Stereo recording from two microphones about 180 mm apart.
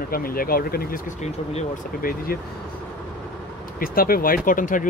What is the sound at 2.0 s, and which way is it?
Speech, 55° left (ahead or behind).